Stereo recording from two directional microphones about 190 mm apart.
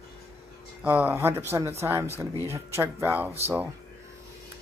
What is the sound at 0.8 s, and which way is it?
Speech, 10° right (ahead or behind).